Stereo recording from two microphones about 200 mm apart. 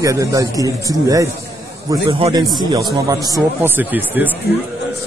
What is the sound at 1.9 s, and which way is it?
Speech, 25° right (ahead or behind).